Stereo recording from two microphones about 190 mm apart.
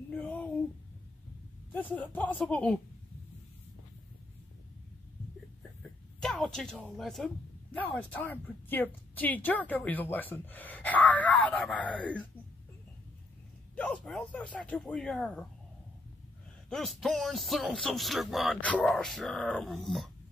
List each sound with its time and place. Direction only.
0.1 s a sound: 5° left (ahead or behind)
2.0 s a woman's voice: 5° left (ahead or behind)
5.6 s speech: centre (ahead or behind)
13.7 s speech: 5° left (ahead or behind)
16.6 s speech: centre (ahead or behind)